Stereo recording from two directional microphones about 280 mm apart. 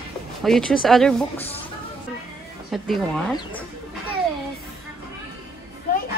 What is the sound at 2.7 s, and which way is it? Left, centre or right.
Speech, centre.